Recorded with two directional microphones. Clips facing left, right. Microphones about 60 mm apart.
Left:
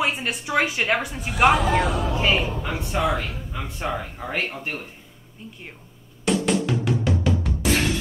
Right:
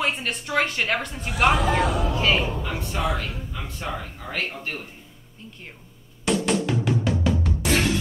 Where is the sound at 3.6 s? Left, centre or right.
Centre.